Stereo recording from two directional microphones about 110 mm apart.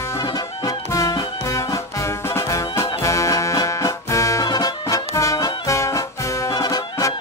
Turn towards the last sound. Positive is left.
turn(degrees=35)  # may be behind; listen again after turning